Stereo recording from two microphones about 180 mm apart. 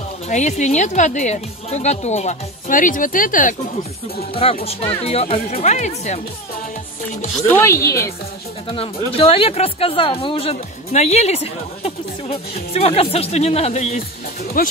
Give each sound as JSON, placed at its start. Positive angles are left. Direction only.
{"t": 0.3, "sound": "speech", "side_deg": 40}
{"t": 4.3, "sound": "speech", "side_deg": 35}
{"t": 7.4, "sound": "speech", "side_deg": 10}
{"t": 8.6, "sound": "speech", "side_deg": 30}
{"t": 14.6, "sound": "speech", "side_deg": 50}